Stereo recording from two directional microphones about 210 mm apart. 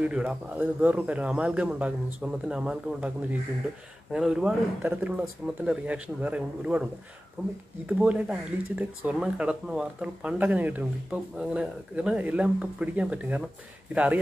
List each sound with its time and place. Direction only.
0.0 s a man's voice: 5° right (ahead or behind)
7.8 s speech: 5° right (ahead or behind)